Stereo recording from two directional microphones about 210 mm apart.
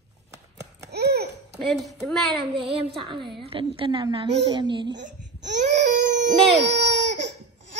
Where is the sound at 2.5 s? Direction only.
25° right (ahead or behind).